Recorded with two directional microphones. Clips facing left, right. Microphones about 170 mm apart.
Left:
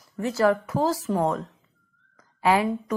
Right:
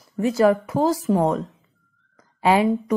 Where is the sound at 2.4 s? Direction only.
25° right (ahead or behind).